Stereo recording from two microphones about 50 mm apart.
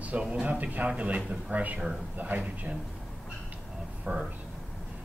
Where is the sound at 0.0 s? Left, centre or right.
Right.